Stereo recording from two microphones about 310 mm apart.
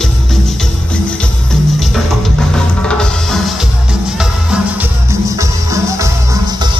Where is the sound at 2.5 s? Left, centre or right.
Centre.